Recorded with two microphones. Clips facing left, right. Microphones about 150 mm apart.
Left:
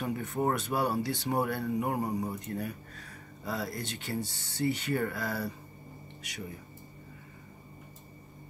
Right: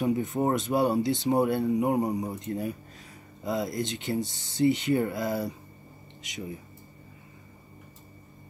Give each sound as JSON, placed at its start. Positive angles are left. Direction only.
{"t": 0.0, "sound": "speech", "side_deg": -20}